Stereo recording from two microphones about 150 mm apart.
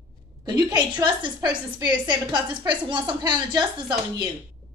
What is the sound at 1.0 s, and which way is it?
A woman's voice, 30° right (ahead or behind).